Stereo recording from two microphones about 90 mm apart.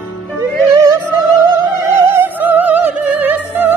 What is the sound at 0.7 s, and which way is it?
Music, 30° right (ahead or behind).